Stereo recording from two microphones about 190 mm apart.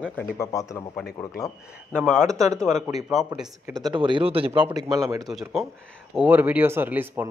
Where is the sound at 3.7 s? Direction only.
20° right (ahead or behind).